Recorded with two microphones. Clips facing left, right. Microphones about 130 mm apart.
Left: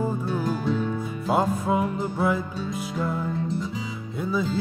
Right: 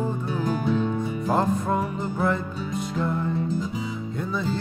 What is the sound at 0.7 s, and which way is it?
Music, 15° right (ahead or behind).